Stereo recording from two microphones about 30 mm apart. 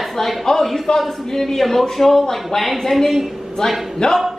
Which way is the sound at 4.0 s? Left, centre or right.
Left.